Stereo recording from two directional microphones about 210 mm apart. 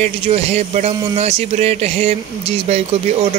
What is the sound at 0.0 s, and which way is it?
Speech, 30° right (ahead or behind).